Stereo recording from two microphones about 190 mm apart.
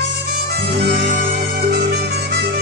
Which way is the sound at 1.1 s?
50° right (ahead or behind).